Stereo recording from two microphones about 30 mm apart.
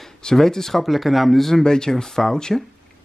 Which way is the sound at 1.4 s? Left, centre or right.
Centre.